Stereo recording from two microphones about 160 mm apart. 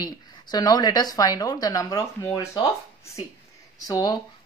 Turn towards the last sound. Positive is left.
turn(degrees=25)  # may be behind; listen again after turning